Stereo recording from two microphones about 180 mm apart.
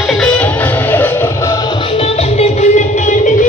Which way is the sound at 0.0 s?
Centre (ahead or behind).